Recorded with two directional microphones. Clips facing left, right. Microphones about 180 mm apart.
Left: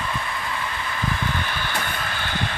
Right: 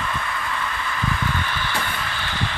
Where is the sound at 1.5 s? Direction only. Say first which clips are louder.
Right 1 dB; 45° left (ahead or behind).